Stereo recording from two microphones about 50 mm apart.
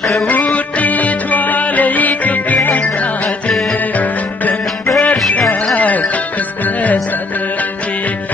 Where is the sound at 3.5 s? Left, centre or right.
Centre.